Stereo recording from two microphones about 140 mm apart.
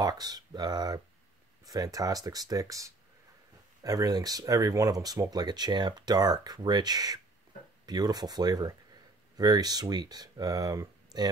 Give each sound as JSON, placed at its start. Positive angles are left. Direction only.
{"t": 0.0, "sound": "speech", "side_deg": -25}